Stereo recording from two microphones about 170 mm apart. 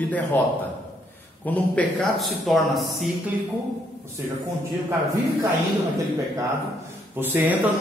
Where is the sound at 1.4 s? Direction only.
10° left (ahead or behind).